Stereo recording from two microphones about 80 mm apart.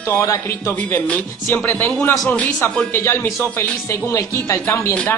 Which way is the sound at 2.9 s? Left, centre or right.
Left.